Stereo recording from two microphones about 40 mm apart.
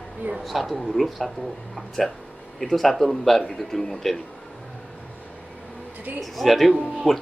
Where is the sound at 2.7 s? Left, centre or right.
Centre.